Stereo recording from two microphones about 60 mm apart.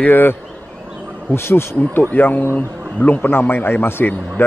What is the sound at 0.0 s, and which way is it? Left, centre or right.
Speech, left.